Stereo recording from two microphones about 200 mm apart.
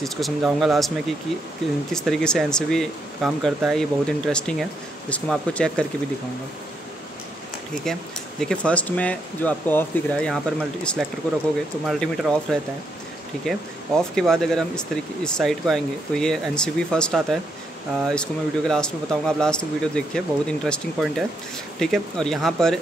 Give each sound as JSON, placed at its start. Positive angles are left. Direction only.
{"t": 0.0, "sound": "speech", "side_deg": 0}
{"t": 7.7, "sound": "speech", "side_deg": 5}